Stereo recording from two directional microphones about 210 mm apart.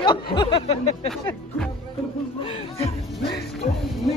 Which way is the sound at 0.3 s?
25° left (ahead or behind).